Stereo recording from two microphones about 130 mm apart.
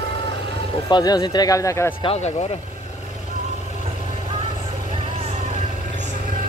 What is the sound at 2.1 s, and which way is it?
Vehicle, 60° left (ahead or behind).